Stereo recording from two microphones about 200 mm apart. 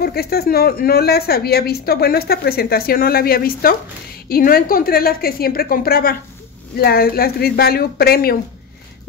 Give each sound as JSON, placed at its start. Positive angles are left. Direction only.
{"t": 0.0, "sound": "speech", "side_deg": 50}